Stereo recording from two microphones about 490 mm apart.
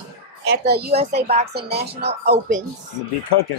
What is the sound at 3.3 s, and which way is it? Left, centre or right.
Speech, left.